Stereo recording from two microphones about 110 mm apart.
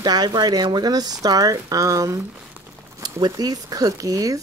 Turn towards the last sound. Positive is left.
turn(degrees=-30)  # may be behind; listen again after turning